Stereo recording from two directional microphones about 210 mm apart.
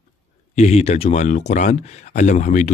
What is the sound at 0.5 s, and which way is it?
Speech, 30° left (ahead or behind).